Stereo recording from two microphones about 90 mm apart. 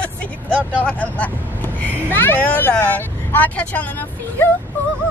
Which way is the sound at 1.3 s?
20° right (ahead or behind).